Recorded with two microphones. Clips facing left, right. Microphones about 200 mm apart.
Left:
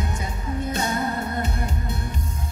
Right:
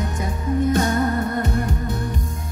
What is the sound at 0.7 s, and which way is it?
Music, 50° right (ahead or behind).